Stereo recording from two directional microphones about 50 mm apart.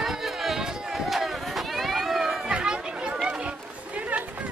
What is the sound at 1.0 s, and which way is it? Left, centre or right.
Run, centre.